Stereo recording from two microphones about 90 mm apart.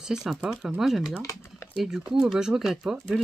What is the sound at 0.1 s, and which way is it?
Speech, 5° right (ahead or behind).